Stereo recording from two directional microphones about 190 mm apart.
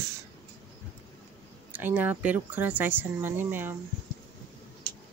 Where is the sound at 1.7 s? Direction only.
10° right (ahead or behind).